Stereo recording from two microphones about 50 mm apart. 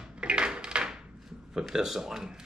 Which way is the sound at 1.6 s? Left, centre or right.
Centre.